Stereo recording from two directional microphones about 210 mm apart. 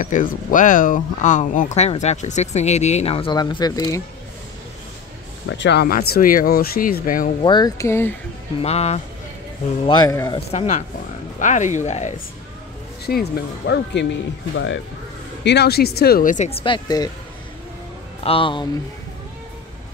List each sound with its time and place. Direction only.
0.0 s speech: 40° left (ahead or behind); by 4.0 s 15° left (ahead or behind)
5.5 s speech: 55° left (ahead or behind)
7.4 s speech: 20° left (ahead or behind)
8.6 s speech: 30° left (ahead or behind)
9.8 s a man's voice: 20° left (ahead or behind)
10.5 s speech: 30° left (ahead or behind)
13.0 s speech: 50° left (ahead or behind)
15.4 s speech: 50° left (ahead or behind); by 17.1 s 20° left (ahead or behind)
18.2 s a man's voice: 25° left (ahead or behind)